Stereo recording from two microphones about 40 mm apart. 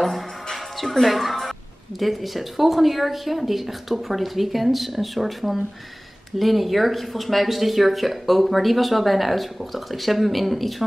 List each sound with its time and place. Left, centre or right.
0.0 s music: centre
2.0 s speech: centre